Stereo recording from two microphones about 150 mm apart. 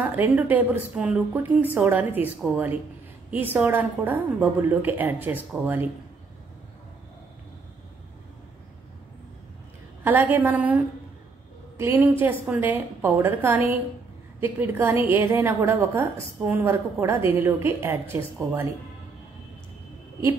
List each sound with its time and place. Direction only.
0.0 s a woman's voice: 10° right (ahead or behind)
10.0 s a woman's voice: 10° right (ahead or behind)